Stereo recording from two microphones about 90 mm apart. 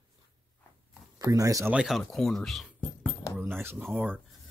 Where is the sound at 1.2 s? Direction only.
40° right (ahead or behind).